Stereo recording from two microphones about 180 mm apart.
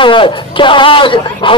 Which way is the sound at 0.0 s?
25° left (ahead or behind).